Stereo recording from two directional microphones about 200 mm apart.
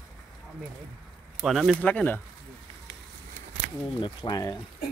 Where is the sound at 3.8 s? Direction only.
25° left (ahead or behind).